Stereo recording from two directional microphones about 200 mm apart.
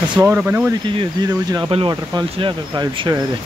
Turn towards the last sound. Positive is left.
turn(degrees=-25)  # may be behind; listen again after turning